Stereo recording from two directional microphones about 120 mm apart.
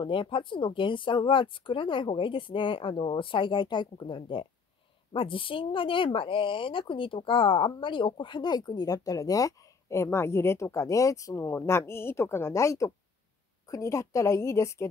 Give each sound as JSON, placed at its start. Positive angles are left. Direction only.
{"t": 0.0, "sound": "a woman's voice", "side_deg": 45}